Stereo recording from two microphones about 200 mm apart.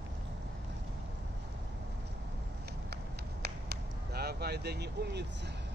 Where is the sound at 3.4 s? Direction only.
55° right (ahead or behind).